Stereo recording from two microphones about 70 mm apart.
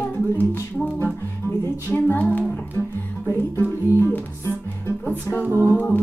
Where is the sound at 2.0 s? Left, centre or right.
Left.